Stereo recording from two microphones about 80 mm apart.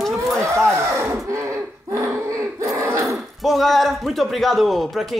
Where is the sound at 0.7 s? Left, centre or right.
Right.